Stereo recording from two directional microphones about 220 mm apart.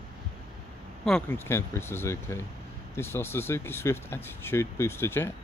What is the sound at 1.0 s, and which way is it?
A man's voice, 5° left (ahead or behind).